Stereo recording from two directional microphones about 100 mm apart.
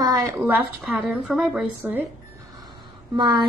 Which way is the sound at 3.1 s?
50° right (ahead or behind).